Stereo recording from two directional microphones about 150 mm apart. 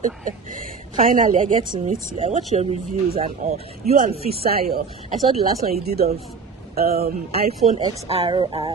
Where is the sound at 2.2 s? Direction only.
45° right (ahead or behind).